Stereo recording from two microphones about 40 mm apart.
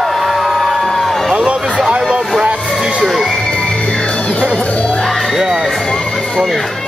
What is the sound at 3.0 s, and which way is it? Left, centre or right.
Speech, centre.